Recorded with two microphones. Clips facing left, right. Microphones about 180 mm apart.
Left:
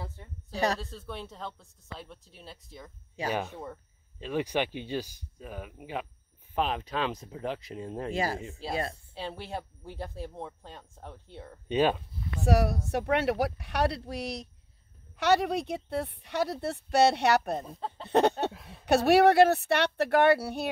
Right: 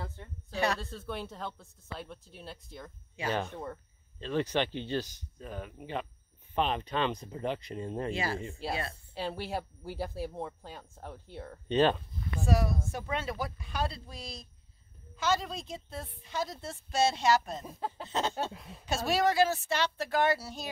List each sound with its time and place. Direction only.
0.5 s speech: 35° left (ahead or behind)
0.7 s speech: centre (ahead or behind)
8.1 s speech: 45° left (ahead or behind)
8.4 s speech: centre (ahead or behind)
12.4 s a woman's voice: 70° left (ahead or behind)
17.6 s speech: 5° right (ahead or behind)
18.0 s a sound: 60° left (ahead or behind)
18.5 s speech: centre (ahead or behind)
18.9 s a woman's voice: 65° left (ahead or behind)